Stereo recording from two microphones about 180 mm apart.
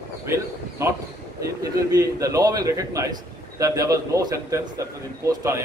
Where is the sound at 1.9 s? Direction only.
20° right (ahead or behind).